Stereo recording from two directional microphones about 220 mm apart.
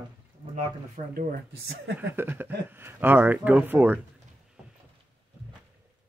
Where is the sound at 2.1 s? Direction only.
10° right (ahead or behind).